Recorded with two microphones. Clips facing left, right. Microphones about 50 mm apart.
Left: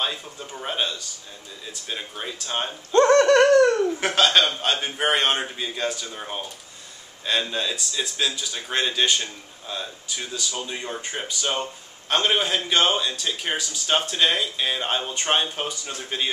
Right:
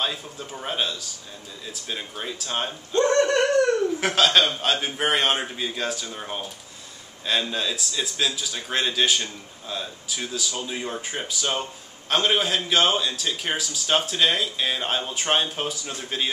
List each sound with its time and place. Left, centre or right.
0.0 s speech: centre
3.0 s dog: left
4.0 s speech: centre